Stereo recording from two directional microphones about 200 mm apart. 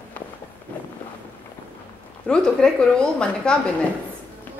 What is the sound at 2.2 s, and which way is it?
A woman's voice, 5° left (ahead or behind).